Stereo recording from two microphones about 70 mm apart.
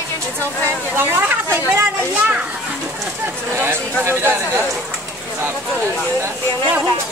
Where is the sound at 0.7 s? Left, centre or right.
Right.